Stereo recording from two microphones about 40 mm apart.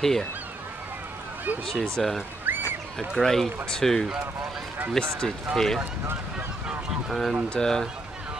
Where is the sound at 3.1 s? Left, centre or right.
Centre.